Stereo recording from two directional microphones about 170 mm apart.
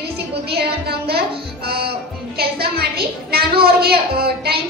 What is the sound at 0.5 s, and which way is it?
A woman's voice, 70° right (ahead or behind).